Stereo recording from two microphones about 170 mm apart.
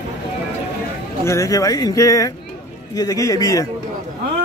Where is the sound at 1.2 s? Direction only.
20° left (ahead or behind).